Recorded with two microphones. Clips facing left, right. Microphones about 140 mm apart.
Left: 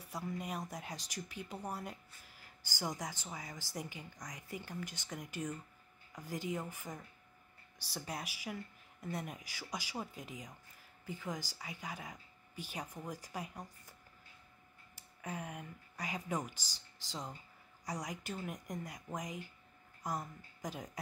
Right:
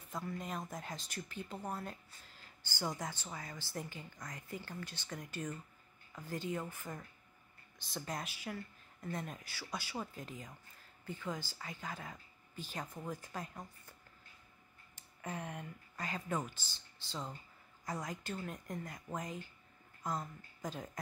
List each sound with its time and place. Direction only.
0.1 s speech: 10° left (ahead or behind)
15.0 s speech: 10° left (ahead or behind)